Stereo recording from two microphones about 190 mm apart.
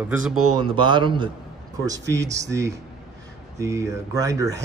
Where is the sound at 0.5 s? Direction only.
25° right (ahead or behind).